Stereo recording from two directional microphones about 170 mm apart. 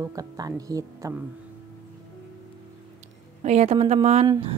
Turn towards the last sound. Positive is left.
turn(degrees=-25)  # may be behind; listen again after turning